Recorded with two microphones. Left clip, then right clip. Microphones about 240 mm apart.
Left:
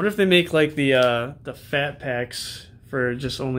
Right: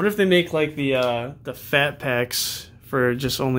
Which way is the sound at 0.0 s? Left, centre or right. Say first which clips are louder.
Even; centre.